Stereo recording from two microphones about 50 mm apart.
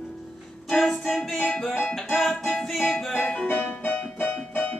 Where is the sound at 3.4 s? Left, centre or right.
Left.